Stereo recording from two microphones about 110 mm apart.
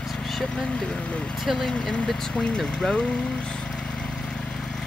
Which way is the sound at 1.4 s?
Centre (ahead or behind).